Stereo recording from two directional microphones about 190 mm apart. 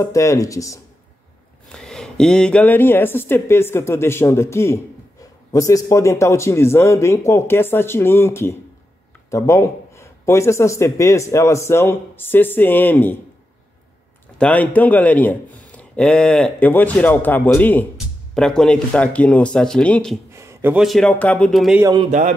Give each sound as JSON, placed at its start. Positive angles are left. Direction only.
{"t": 0.0, "sound": "speech", "side_deg": 15}
{"t": 1.7, "sound": "speech", "side_deg": 5}
{"t": 14.4, "sound": "speech", "side_deg": 10}
{"t": 20.3, "sound": "speech", "side_deg": -10}